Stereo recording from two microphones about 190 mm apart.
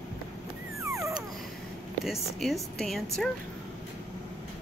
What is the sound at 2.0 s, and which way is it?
Speech, centre (ahead or behind).